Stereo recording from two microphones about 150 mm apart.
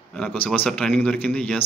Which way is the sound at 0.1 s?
5° left (ahead or behind).